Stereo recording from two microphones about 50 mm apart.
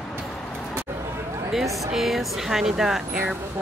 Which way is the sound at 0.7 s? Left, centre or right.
Right.